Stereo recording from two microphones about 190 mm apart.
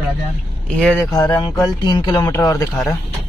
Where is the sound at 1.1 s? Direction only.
25° left (ahead or behind).